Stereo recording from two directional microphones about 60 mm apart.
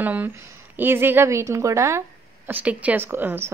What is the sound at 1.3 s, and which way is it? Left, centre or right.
Speech, right.